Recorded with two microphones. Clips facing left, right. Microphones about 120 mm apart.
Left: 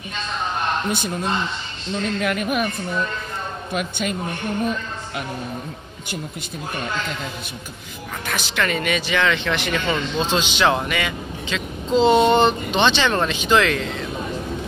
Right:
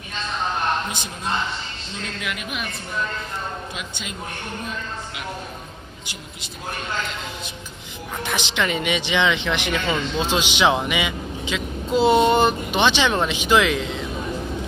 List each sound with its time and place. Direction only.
0.8 s a man's voice: 55° left (ahead or behind)
2.1 s speech: 45° left (ahead or behind)
3.7 s speech: 55° left (ahead or behind)
8.3 s speech: 20° right (ahead or behind)